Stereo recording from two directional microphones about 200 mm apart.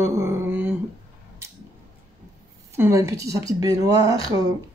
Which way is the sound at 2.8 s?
15° right (ahead or behind).